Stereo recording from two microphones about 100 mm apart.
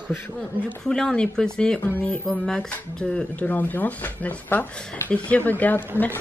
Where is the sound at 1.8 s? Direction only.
15° left (ahead or behind).